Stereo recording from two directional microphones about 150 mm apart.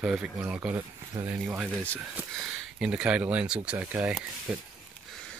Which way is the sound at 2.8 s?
5° right (ahead or behind).